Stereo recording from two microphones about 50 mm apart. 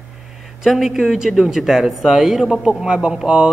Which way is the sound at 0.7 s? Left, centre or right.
Centre.